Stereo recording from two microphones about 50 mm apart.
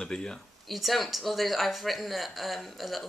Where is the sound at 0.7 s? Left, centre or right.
Centre.